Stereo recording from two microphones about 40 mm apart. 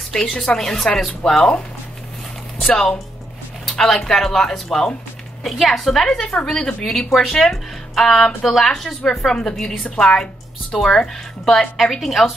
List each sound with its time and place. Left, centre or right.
0.1 s speech: centre
3.9 s speech: centre
6.0 s a woman's voice: left
9.3 s speech: centre
9.8 s a woman's voice: left
10.7 s speech: centre